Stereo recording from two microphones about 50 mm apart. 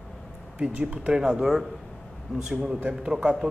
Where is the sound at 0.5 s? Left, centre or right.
Right.